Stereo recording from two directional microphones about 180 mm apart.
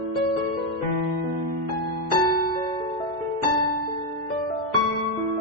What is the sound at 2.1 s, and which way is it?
Music, 50° left (ahead or behind).